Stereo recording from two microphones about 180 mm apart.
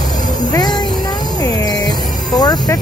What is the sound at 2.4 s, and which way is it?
Speech, 20° left (ahead or behind).